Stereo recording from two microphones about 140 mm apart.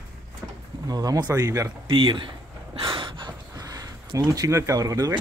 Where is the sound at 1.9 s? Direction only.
40° right (ahead or behind).